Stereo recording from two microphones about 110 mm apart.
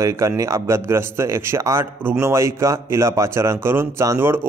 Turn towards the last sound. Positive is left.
turn(degrees=-20)  # may be behind; listen again after turning